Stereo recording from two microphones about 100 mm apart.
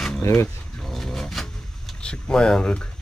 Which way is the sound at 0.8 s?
Centre (ahead or behind).